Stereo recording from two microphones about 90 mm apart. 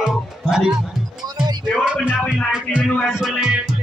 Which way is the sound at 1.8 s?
10° right (ahead or behind).